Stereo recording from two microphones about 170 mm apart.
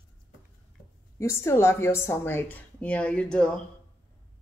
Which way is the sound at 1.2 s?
15° left (ahead or behind).